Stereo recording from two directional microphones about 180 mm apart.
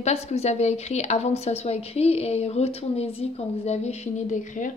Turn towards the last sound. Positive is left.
turn(degrees=45)  # may be behind; listen again after turning